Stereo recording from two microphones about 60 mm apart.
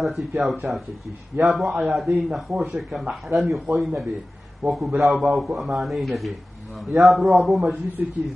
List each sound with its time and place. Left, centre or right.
0.0 s a man's voice: centre
0.7 s speech: centre
1.4 s a man's voice: centre